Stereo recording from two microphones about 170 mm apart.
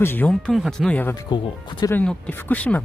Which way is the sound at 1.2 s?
25° left (ahead or behind).